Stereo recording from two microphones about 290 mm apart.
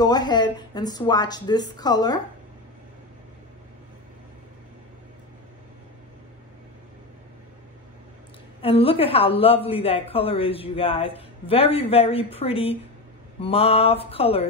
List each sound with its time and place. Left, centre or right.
0.0 s a woman's voice: centre
8.5 s a woman's voice: centre